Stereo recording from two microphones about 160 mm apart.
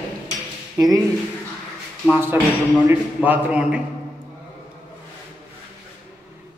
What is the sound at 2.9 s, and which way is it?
Speech, 10° right (ahead or behind).